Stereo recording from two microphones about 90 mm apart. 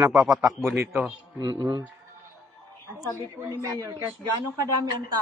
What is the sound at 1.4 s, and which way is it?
Speech, 50° right (ahead or behind).